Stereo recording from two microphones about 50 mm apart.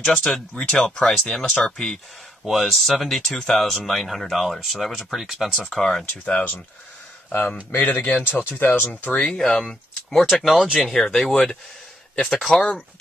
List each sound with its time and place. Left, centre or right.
0.0 s speech: centre
2.4 s speech: centre
6.2 s speech: left
7.7 s speech: left
9.1 s speech: centre